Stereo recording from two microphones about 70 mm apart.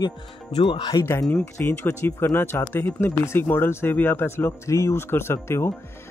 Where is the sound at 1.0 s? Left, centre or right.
Left.